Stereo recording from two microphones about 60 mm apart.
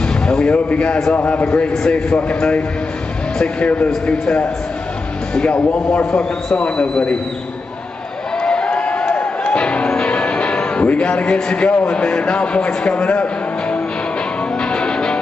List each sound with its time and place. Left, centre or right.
0.0 s speech: centre
1.1 s a man's voice: left
8.4 s music: centre